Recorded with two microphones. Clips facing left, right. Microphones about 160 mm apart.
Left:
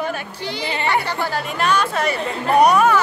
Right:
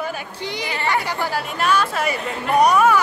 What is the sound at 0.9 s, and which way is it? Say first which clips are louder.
Speech: even; 5° right (ahead or behind).